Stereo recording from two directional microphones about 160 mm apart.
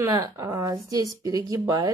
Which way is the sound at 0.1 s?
25° right (ahead or behind).